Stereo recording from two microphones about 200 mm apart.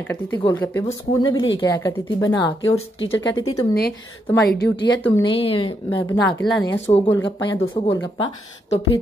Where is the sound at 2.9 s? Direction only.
70° left (ahead or behind).